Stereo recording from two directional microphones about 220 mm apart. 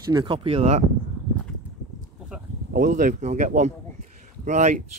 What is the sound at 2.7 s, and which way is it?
Speech, 40° right (ahead or behind).